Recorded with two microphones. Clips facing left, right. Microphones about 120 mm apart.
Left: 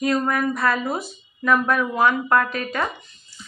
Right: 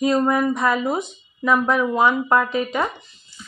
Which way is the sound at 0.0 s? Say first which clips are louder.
Right 3 dB; 20° right (ahead or behind).